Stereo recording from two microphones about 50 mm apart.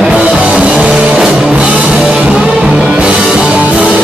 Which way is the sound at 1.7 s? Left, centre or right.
Right.